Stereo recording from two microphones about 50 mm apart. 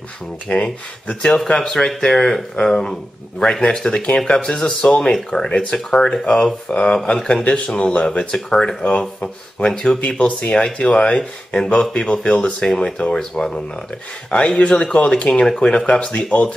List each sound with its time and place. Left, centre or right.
0.5 s speech: left
1.0 s speech: centre